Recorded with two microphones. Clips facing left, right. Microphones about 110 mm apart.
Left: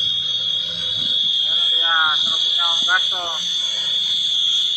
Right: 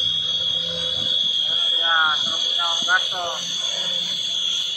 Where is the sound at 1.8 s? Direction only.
10° left (ahead or behind).